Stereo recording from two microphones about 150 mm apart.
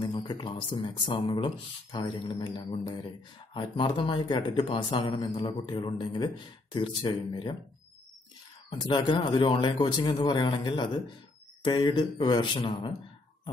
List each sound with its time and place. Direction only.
0.0 s a man's voice: 30° left (ahead or behind)
8.6 s a man's voice: 30° left (ahead or behind)